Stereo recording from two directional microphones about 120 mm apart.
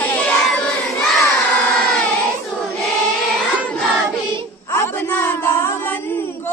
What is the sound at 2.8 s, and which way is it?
Choir, centre (ahead or behind).